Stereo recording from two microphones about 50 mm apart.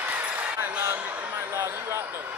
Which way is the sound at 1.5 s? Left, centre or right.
Right.